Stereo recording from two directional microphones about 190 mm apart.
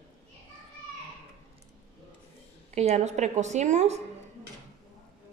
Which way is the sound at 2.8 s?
35° right (ahead or behind).